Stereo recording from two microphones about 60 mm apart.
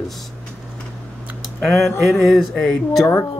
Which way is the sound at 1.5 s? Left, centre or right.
Centre.